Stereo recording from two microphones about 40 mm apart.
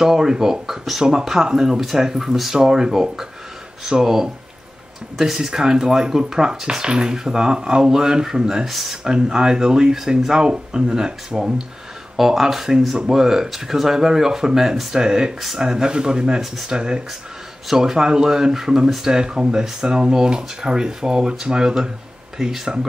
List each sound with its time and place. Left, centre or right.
0.0 s speech: centre
8.6 s speech: centre
9.0 s speech: centre